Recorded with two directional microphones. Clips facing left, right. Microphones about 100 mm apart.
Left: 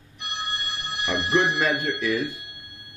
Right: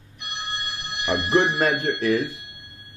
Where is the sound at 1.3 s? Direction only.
40° right (ahead or behind).